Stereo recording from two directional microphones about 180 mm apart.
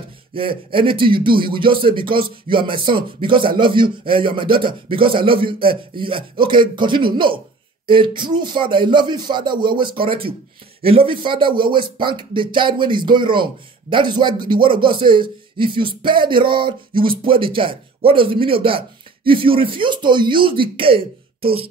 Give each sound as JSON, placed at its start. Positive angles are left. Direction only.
{"t": 0.3, "sound": "speech", "side_deg": -30}